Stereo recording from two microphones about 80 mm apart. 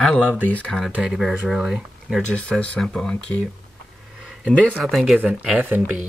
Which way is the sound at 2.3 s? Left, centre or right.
Centre.